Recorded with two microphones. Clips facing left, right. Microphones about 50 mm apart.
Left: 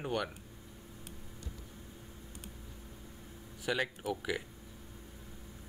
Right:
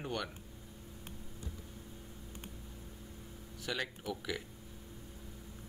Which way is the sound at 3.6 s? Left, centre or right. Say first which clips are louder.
Left 5 dB; centre.